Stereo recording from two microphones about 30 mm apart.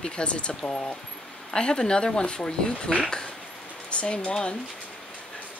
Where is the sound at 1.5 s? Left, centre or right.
Left.